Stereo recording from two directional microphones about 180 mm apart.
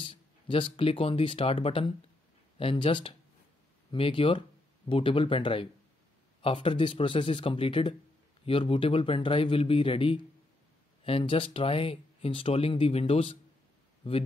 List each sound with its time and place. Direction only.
0.0 s speech: 30° left (ahead or behind)